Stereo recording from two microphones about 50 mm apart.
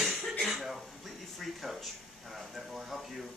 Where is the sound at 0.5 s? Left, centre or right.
Centre.